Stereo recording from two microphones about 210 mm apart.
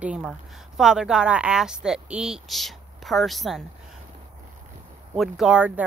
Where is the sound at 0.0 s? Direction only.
5° right (ahead or behind).